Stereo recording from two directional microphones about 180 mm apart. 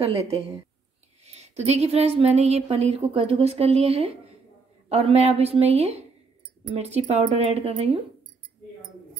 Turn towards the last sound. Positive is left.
turn(degrees=-35)  # may be behind; listen again after turning